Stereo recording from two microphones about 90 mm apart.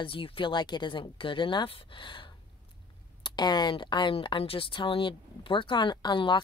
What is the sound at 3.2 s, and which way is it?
Speech, 50° left (ahead or behind).